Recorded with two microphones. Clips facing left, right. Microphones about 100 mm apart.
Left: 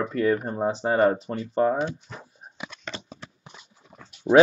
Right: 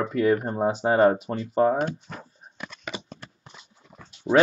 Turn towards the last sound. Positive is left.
turn(degrees=5)  # may be behind; listen again after turning